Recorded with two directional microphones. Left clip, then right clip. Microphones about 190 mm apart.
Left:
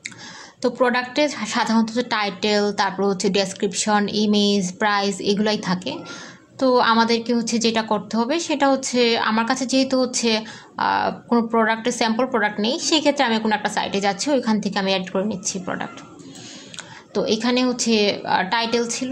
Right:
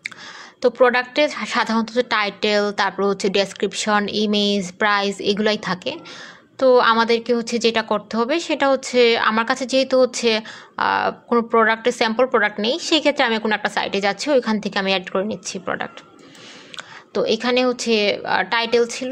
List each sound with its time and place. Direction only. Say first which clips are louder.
0.6 s a woman's voice: right 4 dB; 40° right (ahead or behind)